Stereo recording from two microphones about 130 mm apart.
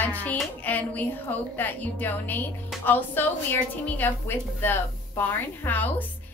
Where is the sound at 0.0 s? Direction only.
15° left (ahead or behind).